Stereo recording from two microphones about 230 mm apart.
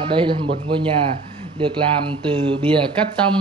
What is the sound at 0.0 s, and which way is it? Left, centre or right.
Speech, right.